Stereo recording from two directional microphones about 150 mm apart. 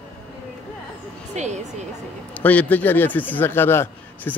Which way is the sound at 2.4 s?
10° left (ahead or behind).